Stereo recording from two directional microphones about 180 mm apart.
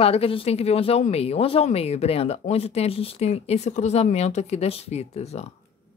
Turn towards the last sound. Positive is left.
turn(degrees=35)  # may be behind; listen again after turning